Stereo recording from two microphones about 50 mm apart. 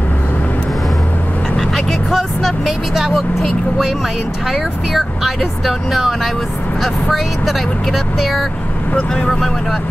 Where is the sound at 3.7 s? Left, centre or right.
Centre.